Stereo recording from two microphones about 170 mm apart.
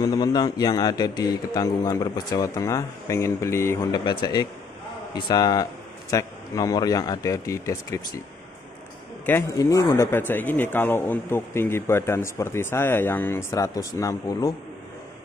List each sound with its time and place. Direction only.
0.0 s a man's voice: 20° left (ahead or behind)
9.2 s speech: 15° left (ahead or behind)